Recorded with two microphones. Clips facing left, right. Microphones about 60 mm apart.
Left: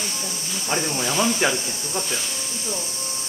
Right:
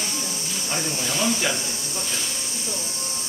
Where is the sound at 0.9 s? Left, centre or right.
Left.